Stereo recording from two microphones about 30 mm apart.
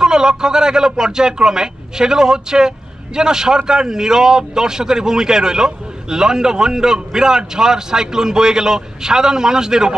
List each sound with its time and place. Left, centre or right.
0.0 s a man's voice: right